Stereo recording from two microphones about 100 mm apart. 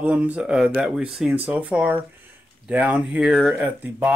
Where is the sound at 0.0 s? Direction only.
15° right (ahead or behind).